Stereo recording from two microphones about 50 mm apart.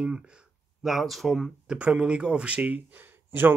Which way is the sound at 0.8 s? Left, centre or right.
Centre.